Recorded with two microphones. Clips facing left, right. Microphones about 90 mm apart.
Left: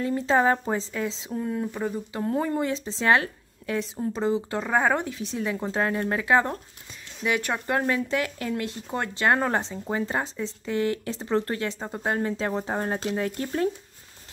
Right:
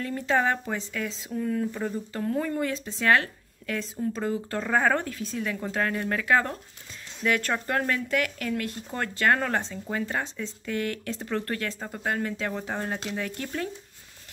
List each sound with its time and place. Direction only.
0.0 s speech: 25° left (ahead or behind)
1.7 s speech: 10° left (ahead or behind)
2.2 s speech: 25° left (ahead or behind)